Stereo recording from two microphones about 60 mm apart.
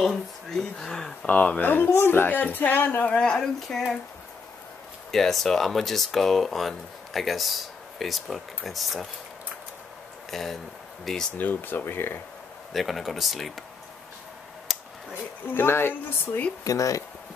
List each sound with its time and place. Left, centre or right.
0.0 s speech: centre
1.2 s speech: left
1.9 s speech: left
3.1 s speech: centre
5.1 s speech: centre
10.3 s speech: centre
11.3 s speech: left
12.7 s speech: centre
14.7 s a sound: centre
15.4 s speech: left
16.6 s speech: left